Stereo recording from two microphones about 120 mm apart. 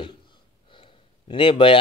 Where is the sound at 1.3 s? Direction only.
45° left (ahead or behind).